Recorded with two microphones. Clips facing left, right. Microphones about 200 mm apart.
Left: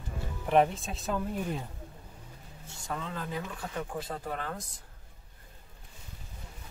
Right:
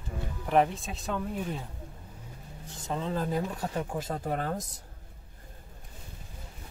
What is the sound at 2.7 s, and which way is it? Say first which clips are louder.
Speech: right 5 dB; 25° right (ahead or behind).